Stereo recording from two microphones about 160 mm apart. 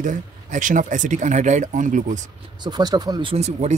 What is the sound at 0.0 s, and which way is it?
Speech, 55° right (ahead or behind).